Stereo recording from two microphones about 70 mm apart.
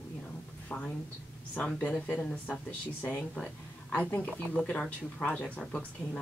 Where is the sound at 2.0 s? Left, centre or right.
Centre.